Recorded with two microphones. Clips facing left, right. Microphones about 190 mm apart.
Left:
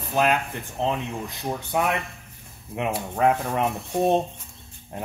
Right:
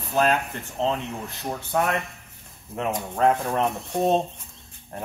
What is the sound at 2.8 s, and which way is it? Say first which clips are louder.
Speech: even; 10° left (ahead or behind).